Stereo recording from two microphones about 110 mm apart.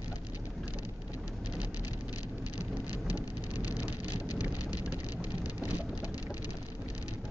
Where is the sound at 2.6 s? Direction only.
35° left (ahead or behind).